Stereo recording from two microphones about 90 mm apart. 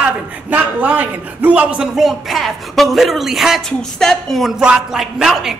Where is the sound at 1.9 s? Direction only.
Centre (ahead or behind).